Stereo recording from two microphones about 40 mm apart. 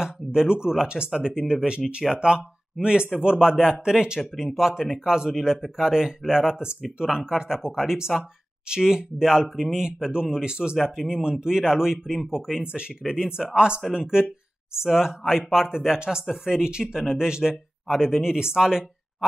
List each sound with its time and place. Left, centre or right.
0.0 s speech: centre